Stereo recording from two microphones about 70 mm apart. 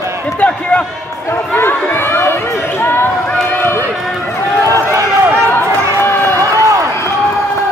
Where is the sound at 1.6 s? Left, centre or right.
Left.